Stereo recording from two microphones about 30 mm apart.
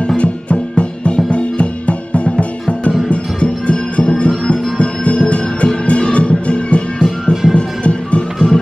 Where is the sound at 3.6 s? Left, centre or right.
Left.